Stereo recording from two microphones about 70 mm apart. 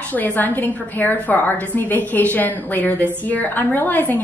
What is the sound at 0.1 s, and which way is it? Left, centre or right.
Speech, left.